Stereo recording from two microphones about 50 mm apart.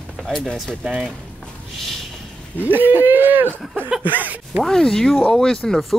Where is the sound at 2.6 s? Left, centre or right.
Right.